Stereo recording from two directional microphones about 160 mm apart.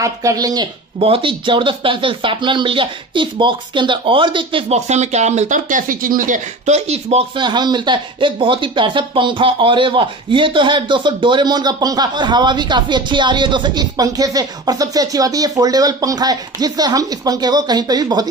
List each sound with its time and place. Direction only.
0.0 s speech: 20° right (ahead or behind)
0.9 s speech: 35° right (ahead or behind)
7.3 s speech: 30° right (ahead or behind)